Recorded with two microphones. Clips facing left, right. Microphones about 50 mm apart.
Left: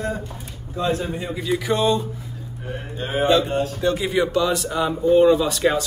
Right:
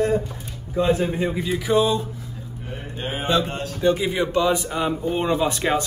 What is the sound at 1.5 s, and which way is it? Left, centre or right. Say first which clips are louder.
Speech: even; centre.